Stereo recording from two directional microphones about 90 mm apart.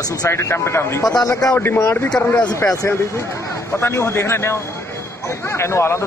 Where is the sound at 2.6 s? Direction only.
35° left (ahead or behind).